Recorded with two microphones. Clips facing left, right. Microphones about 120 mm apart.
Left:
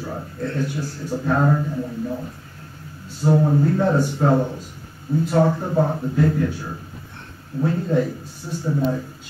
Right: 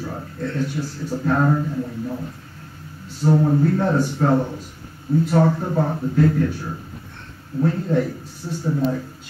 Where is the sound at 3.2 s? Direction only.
10° left (ahead or behind).